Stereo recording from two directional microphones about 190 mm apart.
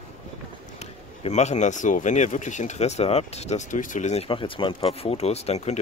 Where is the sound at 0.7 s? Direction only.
35° left (ahead or behind).